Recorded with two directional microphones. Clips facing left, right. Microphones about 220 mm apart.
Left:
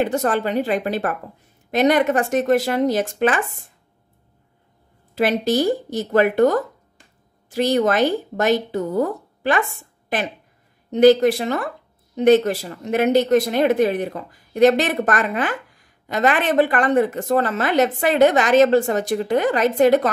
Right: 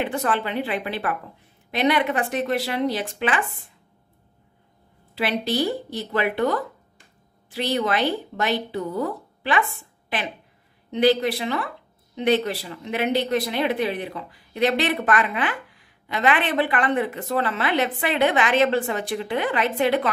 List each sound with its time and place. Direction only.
0.0 s speech: 40° left (ahead or behind)
5.1 s speech: 45° left (ahead or behind)